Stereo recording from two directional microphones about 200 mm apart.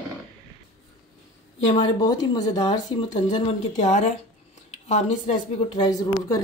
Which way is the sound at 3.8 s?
35° left (ahead or behind).